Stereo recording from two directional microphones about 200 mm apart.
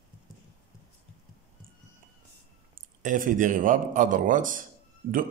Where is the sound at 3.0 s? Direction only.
40° right (ahead or behind).